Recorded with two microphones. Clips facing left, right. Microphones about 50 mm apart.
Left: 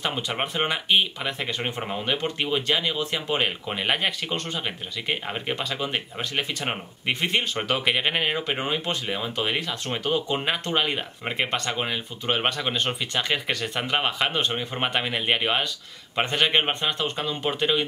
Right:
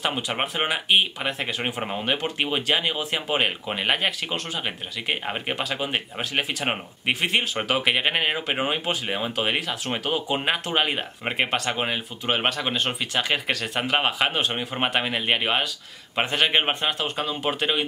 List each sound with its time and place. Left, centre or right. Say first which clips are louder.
0.0 s speech: right 1 dB; centre